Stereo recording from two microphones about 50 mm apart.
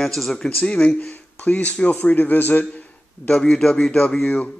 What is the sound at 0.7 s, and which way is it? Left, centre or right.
Speech, left.